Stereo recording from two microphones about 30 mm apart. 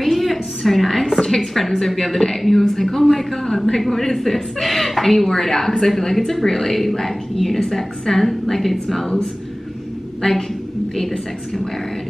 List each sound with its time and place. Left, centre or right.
0.0 s a sound: centre
1.2 s a woman's voice: centre
3.4 s a woman's voice: centre
10.2 s a woman's voice: left
11.0 s a woman's voice: centre